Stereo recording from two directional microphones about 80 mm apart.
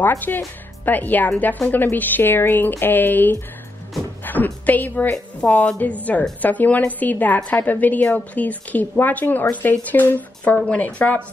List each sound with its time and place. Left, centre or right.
0.3 s a woman's voice: left